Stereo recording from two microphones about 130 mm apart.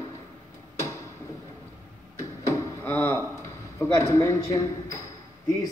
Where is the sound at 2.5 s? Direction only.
20° left (ahead or behind).